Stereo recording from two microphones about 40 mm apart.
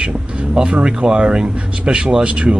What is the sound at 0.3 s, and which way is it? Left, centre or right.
Speech, right.